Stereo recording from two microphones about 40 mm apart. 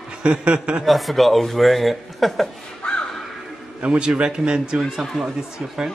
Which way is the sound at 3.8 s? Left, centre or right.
Right.